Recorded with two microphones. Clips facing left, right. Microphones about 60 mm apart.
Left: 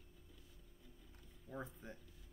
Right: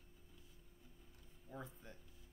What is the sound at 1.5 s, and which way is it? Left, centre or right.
Speech, left.